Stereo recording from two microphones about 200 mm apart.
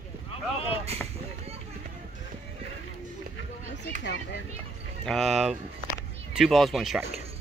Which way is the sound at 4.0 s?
60° left (ahead or behind).